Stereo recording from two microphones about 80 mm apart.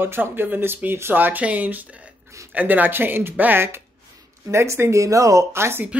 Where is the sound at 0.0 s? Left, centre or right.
Right.